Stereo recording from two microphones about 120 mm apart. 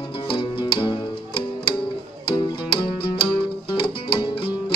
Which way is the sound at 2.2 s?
45° left (ahead or behind).